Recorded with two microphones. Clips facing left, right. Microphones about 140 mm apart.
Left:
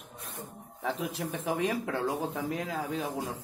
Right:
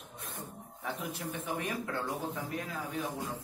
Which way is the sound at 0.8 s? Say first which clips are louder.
Left 5 dB; 90° left.